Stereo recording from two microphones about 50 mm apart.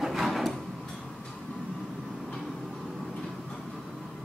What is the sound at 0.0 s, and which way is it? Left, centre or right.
Drawer open or close, centre.